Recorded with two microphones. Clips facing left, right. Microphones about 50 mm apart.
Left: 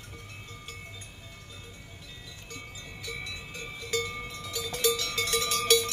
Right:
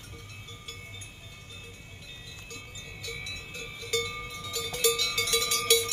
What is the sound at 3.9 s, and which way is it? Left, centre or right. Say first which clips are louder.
Cowbell: even; left.